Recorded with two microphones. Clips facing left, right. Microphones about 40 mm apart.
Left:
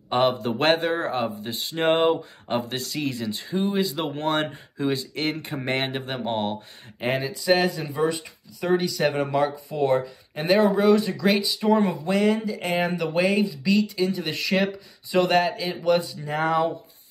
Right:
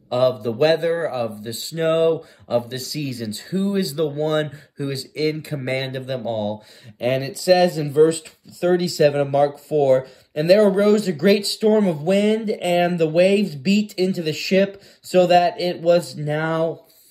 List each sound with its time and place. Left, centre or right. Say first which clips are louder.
0.1 s a man's voice: right 3 dB; left
7.0 s speech: right 4 dB; centre
11.8 s speech: right 3 dB; centre
12.1 s speech: right 4 dB; centre
16.3 s speech: right 2 dB; centre